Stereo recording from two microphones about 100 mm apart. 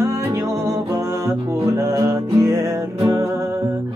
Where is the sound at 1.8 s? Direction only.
30° right (ahead or behind).